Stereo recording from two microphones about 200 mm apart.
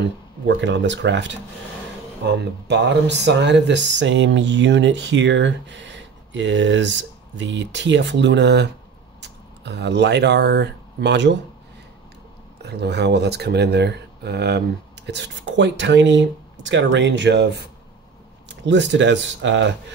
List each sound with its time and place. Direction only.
0.5 s speech: 65° right (ahead or behind)
12.6 s speech: 55° right (ahead or behind)